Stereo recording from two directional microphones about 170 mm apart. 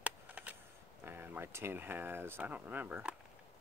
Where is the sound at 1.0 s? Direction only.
15° right (ahead or behind).